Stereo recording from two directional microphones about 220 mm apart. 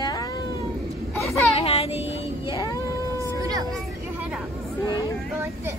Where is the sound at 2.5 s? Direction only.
15° left (ahead or behind).